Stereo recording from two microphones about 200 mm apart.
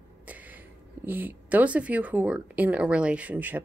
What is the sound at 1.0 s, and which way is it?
Speech, 10° right (ahead or behind).